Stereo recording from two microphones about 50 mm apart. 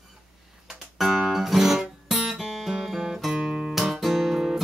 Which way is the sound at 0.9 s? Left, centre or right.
Centre.